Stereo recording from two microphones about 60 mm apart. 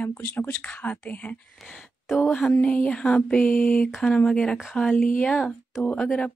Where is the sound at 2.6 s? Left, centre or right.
Left.